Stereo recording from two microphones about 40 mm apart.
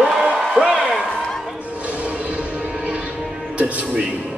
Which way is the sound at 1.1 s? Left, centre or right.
Centre.